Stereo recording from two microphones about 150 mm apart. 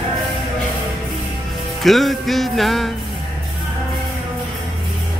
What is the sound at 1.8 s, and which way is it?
Music, centre (ahead or behind).